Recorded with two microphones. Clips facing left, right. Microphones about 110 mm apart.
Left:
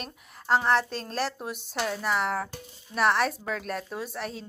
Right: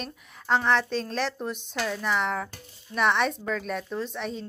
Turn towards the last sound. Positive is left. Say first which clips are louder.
# right 3 dB
turn(degrees=5)  # may be behind; listen again after turning